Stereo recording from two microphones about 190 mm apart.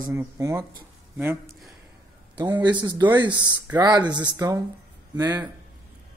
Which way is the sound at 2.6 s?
25° right (ahead or behind).